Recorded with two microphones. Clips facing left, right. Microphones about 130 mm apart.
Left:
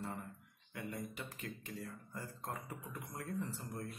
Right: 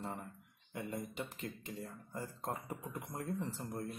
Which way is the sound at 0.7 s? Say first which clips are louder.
Right 3 dB; 25° right (ahead or behind).